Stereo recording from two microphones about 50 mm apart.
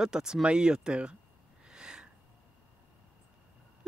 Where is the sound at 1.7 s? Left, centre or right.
Centre.